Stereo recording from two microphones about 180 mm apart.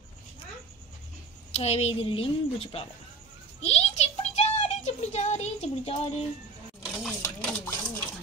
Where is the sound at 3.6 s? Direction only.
35° left (ahead or behind).